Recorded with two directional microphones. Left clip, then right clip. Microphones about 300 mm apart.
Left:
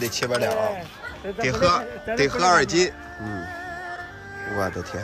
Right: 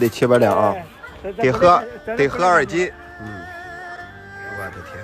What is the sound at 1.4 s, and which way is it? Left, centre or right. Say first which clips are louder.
Speech: right 7 dB; centre.